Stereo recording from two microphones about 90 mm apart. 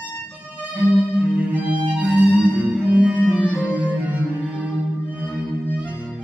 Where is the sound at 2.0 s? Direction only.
15° right (ahead or behind).